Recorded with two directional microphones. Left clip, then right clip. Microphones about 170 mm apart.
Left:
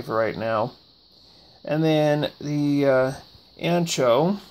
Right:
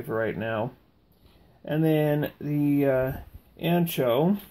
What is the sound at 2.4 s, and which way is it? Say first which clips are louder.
Speech: left 2 dB; 45° left (ahead or behind).